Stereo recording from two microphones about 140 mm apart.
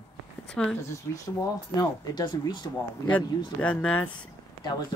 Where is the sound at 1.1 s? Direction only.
25° left (ahead or behind).